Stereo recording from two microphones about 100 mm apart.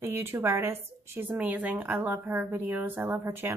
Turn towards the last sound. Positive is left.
turn(degrees=-25)  # may be behind; listen again after turning